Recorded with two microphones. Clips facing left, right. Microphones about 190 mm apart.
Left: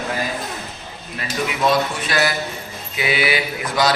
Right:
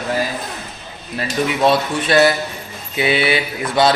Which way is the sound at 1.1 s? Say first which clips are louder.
Right 5 dB; 30° right (ahead or behind).